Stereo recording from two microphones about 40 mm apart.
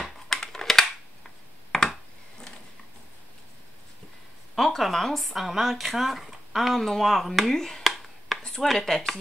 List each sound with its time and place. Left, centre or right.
0.3 s a sound: centre
4.6 s speech: centre
7.8 s finger snapping: centre
8.5 s speech: centre